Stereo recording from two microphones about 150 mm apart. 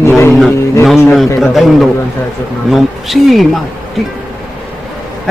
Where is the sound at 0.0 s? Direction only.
15° left (ahead or behind).